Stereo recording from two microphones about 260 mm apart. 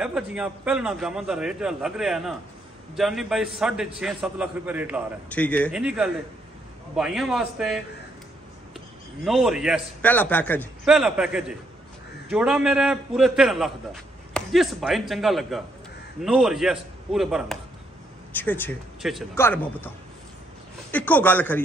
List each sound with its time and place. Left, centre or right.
0.0 s a man's voice: centre
5.3 s a man's voice: centre
9.2 s a man's voice: centre
20.9 s speech: centre